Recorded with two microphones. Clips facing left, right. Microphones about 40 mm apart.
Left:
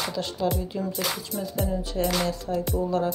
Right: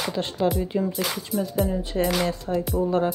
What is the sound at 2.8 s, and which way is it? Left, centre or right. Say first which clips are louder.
Music: right 4 dB; right.